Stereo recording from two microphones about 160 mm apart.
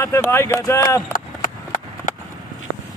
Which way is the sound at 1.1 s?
55° left (ahead or behind).